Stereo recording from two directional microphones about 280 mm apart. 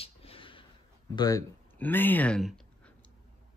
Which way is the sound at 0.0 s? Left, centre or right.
Centre.